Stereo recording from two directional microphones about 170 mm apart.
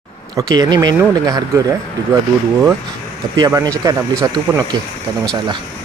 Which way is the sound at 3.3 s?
25° right (ahead or behind).